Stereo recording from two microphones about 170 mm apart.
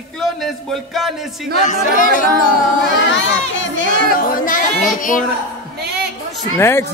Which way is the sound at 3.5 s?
90° left.